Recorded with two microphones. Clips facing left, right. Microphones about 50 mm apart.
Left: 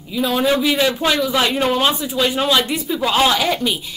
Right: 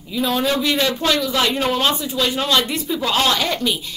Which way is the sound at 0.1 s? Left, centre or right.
Centre.